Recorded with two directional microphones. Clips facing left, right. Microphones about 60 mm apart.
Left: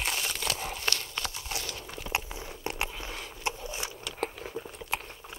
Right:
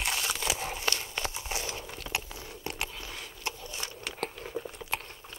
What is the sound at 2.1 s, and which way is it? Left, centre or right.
Biting, left.